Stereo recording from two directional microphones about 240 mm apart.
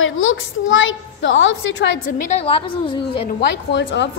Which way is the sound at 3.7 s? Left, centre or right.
Left.